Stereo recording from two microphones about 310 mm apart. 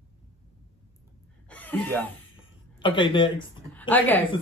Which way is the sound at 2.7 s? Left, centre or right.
Centre.